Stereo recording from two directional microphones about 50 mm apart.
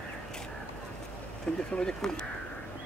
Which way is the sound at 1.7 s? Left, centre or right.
Centre.